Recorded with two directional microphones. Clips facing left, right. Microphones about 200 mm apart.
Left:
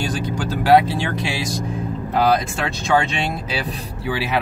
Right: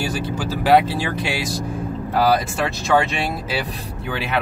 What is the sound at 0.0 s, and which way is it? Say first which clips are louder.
Speech: even; 5° right (ahead or behind).